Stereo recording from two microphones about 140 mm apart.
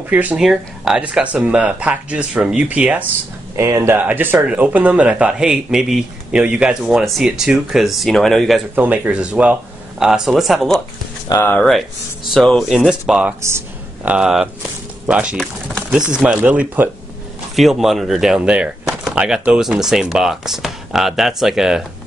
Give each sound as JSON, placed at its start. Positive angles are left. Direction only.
{"t": 0.1, "sound": "speech", "side_deg": -10}
{"t": 3.5, "sound": "speech", "side_deg": -20}
{"t": 8.7, "sound": "speech", "side_deg": -10}
{"t": 11.3, "sound": "speech", "side_deg": 15}
{"t": 12.4, "sound": "speech", "side_deg": 0}
{"t": 13.4, "sound": "a sound", "side_deg": -20}
{"t": 14.1, "sound": "speech", "side_deg": -5}
{"t": 17.6, "sound": "speech", "side_deg": 0}